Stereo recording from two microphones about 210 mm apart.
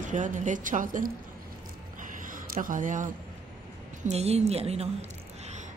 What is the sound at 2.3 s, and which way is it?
Speech, 40° right (ahead or behind).